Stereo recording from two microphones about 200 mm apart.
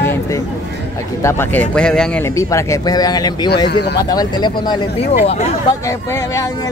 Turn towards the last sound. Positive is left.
turn(degrees=15)  # may be behind; listen again after turning